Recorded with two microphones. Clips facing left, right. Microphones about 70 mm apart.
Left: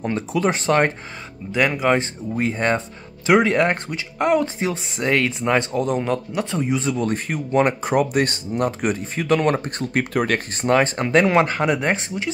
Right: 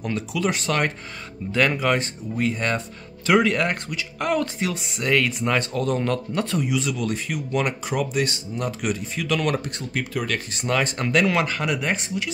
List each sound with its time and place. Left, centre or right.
0.0 s speech: left
1.5 s speech: centre
1.9 s speech: left